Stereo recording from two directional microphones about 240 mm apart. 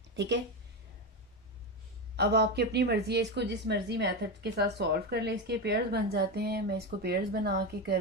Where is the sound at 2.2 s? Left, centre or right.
Right.